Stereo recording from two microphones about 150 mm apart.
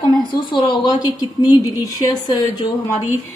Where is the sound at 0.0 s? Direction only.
30° left (ahead or behind).